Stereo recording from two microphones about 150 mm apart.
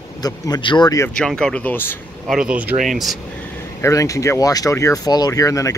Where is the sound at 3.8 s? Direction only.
20° left (ahead or behind).